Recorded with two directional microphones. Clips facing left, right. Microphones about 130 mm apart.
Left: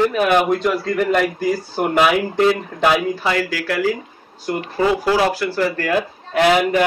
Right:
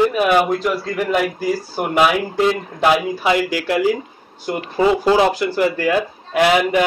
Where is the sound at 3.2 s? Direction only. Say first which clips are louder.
Right 3 dB; 15° right (ahead or behind).